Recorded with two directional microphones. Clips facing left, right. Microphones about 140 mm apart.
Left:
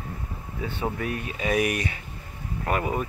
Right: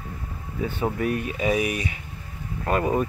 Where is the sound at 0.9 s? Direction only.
40° right (ahead or behind).